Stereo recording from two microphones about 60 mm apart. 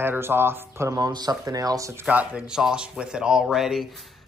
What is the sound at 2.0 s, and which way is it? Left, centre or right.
Speech, right.